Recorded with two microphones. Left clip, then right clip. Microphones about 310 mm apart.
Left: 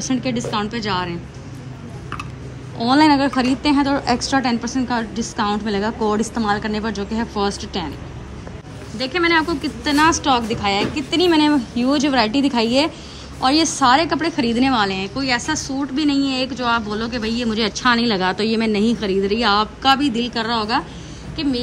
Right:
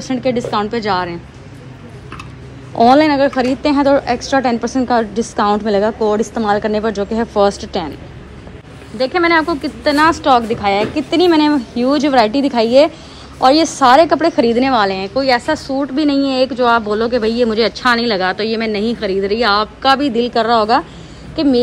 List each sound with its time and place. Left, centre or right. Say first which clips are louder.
0.0 s speech: right 5 dB; centre
2.8 s a woman's voice: right 5 dB; centre
8.9 s a woman's voice: right 5 dB; centre